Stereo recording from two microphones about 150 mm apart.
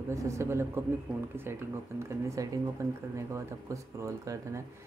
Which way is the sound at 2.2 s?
20° right (ahead or behind).